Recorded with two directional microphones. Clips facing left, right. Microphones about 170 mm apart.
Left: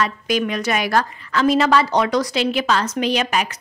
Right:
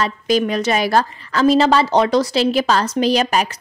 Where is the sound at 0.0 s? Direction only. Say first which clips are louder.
Right 3 dB; 30° right (ahead or behind).